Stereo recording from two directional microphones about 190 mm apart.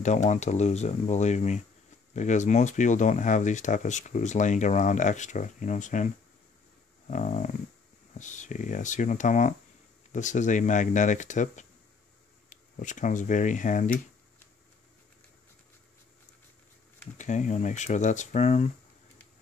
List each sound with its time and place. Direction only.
0.0 s speech: 40° left (ahead or behind)
7.1 s speech: 40° left (ahead or behind)
17.2 s speech: 40° left (ahead or behind)